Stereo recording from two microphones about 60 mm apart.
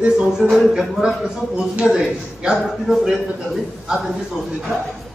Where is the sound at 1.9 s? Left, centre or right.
Centre.